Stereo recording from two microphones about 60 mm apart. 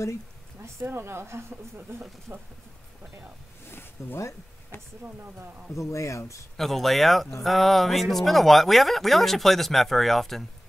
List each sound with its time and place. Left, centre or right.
0.6 s speech: right
2.3 s speech: centre
4.2 s speech: left
5.0 s speech: right
5.8 s speech: left
6.5 s speech: centre